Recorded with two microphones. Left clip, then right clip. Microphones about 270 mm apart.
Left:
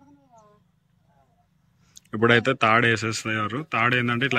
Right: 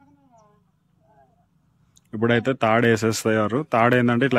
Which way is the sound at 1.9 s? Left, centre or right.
Centre.